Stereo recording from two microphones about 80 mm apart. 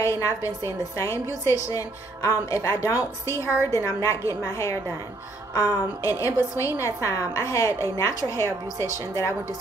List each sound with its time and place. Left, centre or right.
0.0 s a woman's voice: left